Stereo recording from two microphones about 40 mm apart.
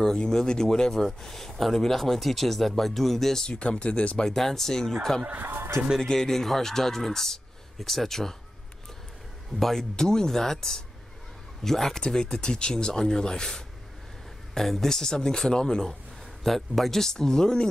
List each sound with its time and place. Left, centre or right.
0.0 s speech: centre
3.4 s speech: left
4.2 s speech: centre
6.1 s speech: centre
9.6 s speech: centre
16.4 s speech: centre